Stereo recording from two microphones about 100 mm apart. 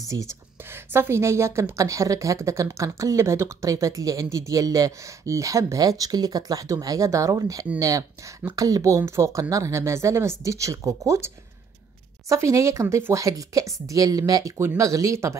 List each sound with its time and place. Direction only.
0.1 s a woman's voice: 40° right (ahead or behind)
0.9 s a woman's voice: 25° right (ahead or behind)